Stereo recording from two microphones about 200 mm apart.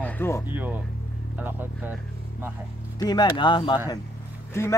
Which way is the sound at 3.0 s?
20° left (ahead or behind).